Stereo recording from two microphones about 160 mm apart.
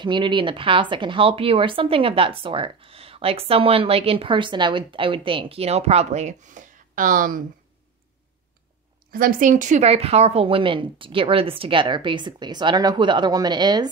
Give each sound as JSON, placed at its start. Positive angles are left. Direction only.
{"t": 0.0, "sound": "speech", "side_deg": -30}
{"t": 9.1, "sound": "speech", "side_deg": -60}